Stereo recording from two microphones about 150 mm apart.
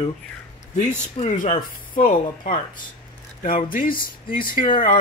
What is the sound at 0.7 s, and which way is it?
Speech, 55° left (ahead or behind).